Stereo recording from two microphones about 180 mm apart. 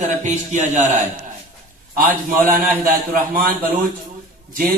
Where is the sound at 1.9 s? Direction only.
50° right (ahead or behind).